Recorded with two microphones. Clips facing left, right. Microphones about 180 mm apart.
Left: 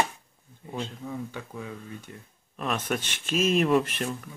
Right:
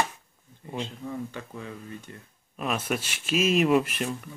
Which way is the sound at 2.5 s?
5° right (ahead or behind).